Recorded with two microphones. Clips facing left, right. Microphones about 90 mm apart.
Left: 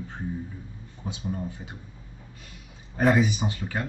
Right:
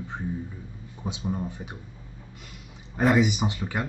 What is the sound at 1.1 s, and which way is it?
Speech, 20° right (ahead or behind).